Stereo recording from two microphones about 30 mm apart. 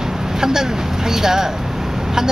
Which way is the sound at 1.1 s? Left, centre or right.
Centre.